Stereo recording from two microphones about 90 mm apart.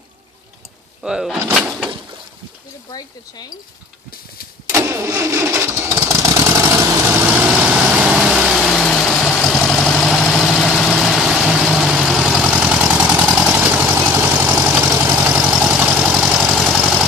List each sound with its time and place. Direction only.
1.0 s speech: 5° right (ahead or behind)
2.9 s speech: 45° left (ahead or behind)
4.9 s vehicle: 35° right (ahead or behind)
15.6 s vehicle: 10° right (ahead or behind)